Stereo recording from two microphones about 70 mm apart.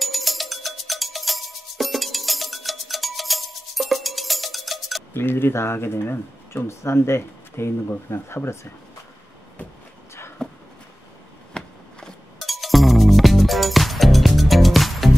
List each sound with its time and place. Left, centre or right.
0.0 s music: centre
5.1 s speech: left
11.6 s a sound: centre
12.4 s music: centre